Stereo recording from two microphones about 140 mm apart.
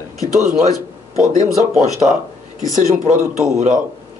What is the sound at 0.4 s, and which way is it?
Speech, 55° right (ahead or behind).